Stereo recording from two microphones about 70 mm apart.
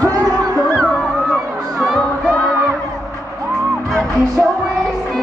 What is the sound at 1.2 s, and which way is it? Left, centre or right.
Crowd, centre.